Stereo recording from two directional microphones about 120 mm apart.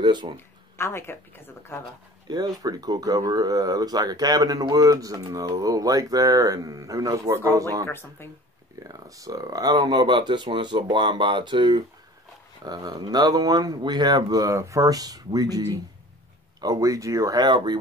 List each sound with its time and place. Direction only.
0.0 s speech: 40° right (ahead or behind)
0.7 s speech: 20° left (ahead or behind)
2.2 s speech: 35° right (ahead or behind)
7.8 s speech: 20° left (ahead or behind)
8.8 s speech: 30° right (ahead or behind)